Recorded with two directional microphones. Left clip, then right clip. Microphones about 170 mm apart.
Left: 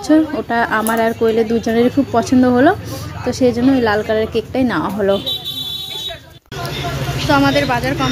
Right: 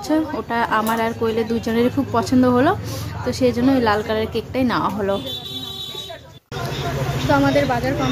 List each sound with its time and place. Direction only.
0.1 s speech: 20° left (ahead or behind)
7.2 s speech: 5° left (ahead or behind)